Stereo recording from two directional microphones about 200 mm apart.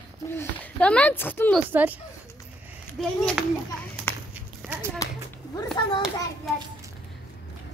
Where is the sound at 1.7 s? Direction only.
10° right (ahead or behind).